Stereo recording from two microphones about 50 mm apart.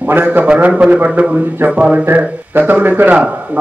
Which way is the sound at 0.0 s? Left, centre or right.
Right.